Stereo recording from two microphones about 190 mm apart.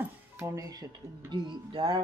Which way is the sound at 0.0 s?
15° right (ahead or behind).